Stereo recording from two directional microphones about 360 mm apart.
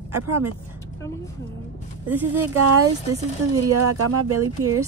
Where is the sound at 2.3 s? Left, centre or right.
Right.